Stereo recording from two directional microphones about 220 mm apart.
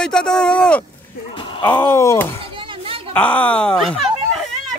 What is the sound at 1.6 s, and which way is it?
Speech, 10° left (ahead or behind).